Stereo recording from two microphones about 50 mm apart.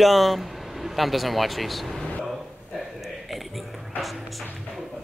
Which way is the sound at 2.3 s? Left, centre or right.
Centre.